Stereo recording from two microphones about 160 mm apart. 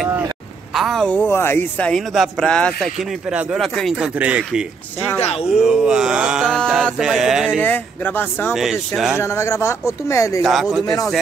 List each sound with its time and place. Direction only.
0.7 s speech: centre (ahead or behind)
1.2 s speech: 15° left (ahead or behind); by 4.6 s 5° right (ahead or behind)
5.2 s speech: 40° left (ahead or behind)
5.5 s speech: 5° right (ahead or behind)
7.6 s speech: 10° left (ahead or behind)
8.9 s speech: 5° right (ahead or behind)
9.2 s speech: 15° left (ahead or behind)
10.4 s speech: centre (ahead or behind)